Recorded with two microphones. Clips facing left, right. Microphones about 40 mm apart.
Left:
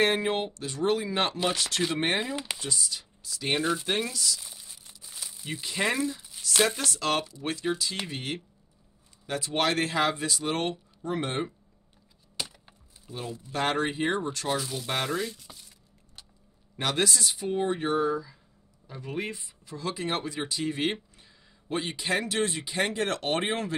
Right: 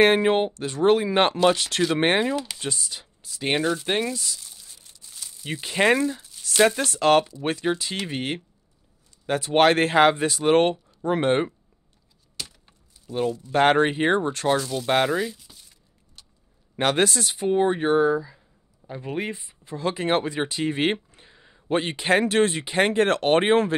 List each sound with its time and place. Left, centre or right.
0.0 s speech: right
2.3 s speech: centre
2.6 s speech: right
4.4 s crumpling: centre
5.6 s speech: right
6.4 s a sound: centre
6.8 s speech: right
12.4 s a sound: centre
13.5 s speech: right
14.6 s speech: centre
16.7 s speech: right